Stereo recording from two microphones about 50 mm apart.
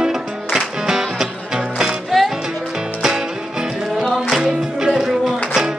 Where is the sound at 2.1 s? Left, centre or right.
Centre.